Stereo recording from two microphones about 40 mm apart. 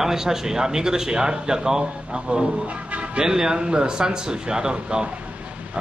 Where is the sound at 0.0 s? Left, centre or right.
Centre.